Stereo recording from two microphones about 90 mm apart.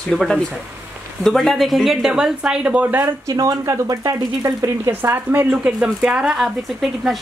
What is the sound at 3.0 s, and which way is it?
Speech, 40° right (ahead or behind).